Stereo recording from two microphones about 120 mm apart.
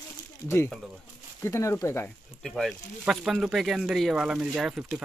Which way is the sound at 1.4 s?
25° left (ahead or behind).